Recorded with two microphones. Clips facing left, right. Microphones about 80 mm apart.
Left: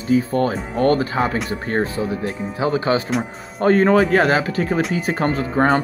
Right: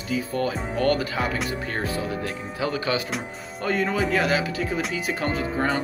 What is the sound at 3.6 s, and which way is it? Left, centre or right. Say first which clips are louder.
Speech: left 10 dB; left.